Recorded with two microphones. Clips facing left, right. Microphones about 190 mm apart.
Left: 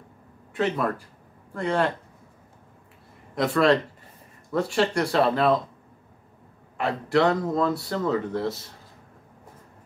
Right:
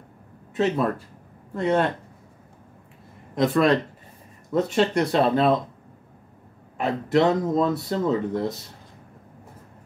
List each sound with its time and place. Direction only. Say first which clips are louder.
0.6 s speech: right 3 dB; 25° right (ahead or behind)
3.3 s speech: right 1 dB; 20° right (ahead or behind)
6.8 s speech: right 1 dB; 20° right (ahead or behind)